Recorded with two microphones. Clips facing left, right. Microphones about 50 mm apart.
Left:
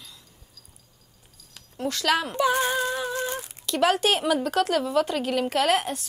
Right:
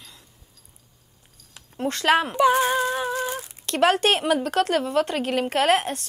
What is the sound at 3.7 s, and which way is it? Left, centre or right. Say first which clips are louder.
A woman's voice: right 2 dB; right.